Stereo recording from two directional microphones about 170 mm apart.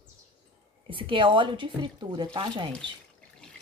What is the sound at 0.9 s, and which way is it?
Speech, 30° right (ahead or behind).